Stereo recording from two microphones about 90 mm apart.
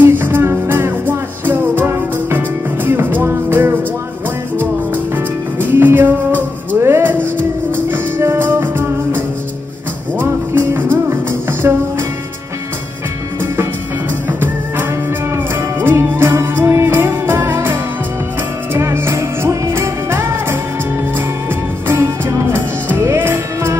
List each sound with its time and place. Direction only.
0.0 s music: 25° right (ahead or behind)
15.3 s music: 25° right (ahead or behind)
21.8 s music: 25° right (ahead or behind)